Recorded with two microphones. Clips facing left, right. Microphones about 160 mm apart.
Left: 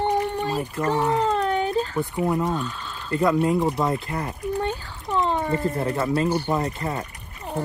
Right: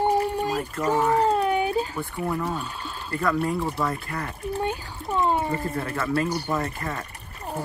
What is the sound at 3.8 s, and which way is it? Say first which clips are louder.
Speech: left 3 dB; 25° left (ahead or behind).